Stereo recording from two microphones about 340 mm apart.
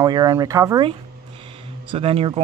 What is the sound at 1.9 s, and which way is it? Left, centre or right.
Speech, centre.